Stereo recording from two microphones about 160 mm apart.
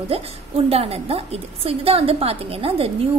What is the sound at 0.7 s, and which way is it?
A woman's voice, 40° right (ahead or behind).